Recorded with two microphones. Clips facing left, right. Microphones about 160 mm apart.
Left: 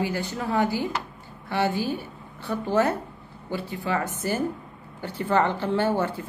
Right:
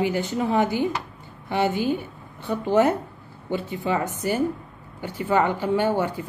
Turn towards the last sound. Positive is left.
turn(degrees=-15)  # may be behind; listen again after turning